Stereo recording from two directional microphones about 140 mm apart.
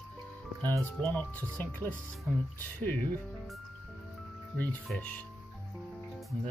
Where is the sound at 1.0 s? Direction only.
10° left (ahead or behind).